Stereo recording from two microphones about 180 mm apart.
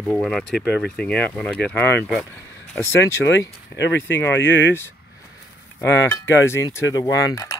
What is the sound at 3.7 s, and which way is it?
Speech, 75° left (ahead or behind).